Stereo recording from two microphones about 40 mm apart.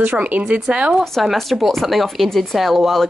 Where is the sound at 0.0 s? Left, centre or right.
Right.